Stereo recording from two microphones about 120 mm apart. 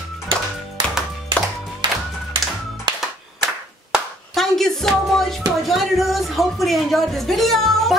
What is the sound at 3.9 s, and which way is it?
Music, 5° left (ahead or behind).